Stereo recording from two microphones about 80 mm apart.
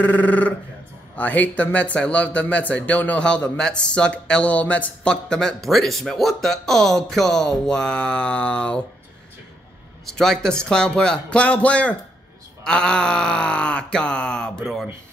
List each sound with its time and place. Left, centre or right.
0.0 s a man's voice: left
10.0 s a man's voice: centre